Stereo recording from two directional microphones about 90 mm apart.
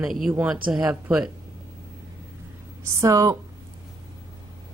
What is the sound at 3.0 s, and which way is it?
Speech, 35° right (ahead or behind).